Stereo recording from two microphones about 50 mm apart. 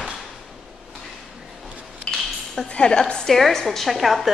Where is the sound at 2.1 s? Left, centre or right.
Left.